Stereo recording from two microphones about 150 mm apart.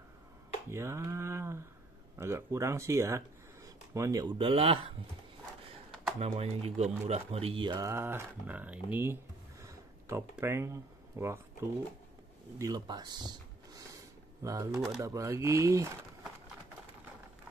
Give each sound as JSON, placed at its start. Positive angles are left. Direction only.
{"t": 0.7, "sound": "speech", "side_deg": -15}
{"t": 4.4, "sound": "speech", "side_deg": -40}
{"t": 6.1, "sound": "speech", "side_deg": -45}
{"t": 7.9, "sound": "speech", "side_deg": -15}
{"t": 12.5, "sound": "a sound", "side_deg": -25}
{"t": 15.0, "sound": "speech", "side_deg": -20}